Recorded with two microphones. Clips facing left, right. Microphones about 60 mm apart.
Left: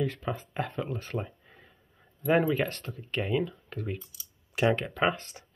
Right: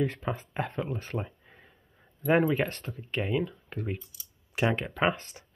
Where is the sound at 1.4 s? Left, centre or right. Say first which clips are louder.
Even; centre.